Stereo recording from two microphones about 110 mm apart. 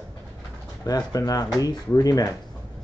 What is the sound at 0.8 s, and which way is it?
Speech, 35° left (ahead or behind).